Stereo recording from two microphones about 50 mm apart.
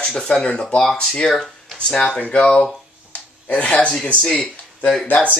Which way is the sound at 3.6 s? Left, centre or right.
Left.